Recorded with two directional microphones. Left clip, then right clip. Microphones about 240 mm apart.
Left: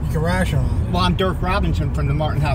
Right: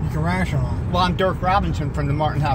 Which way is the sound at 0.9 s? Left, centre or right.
Right.